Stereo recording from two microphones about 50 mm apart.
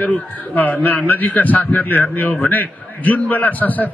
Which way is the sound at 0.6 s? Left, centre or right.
Left.